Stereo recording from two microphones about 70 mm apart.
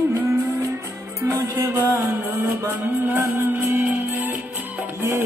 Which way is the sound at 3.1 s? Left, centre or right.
Right.